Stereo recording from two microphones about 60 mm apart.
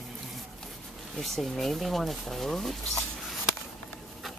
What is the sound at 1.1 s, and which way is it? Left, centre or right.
Speech, centre.